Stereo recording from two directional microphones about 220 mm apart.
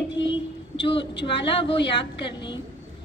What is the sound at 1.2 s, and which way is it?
Speech, 25° left (ahead or behind).